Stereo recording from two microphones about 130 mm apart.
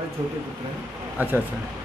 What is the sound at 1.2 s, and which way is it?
Speech, 15° right (ahead or behind).